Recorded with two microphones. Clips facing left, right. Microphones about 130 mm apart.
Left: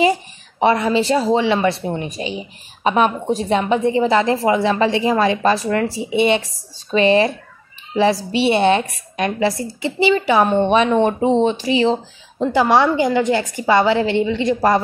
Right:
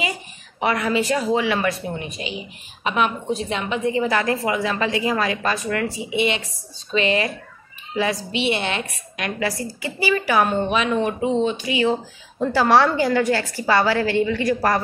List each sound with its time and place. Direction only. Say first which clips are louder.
0.6 s a woman's voice: left 5 dB; 30° left (ahead or behind)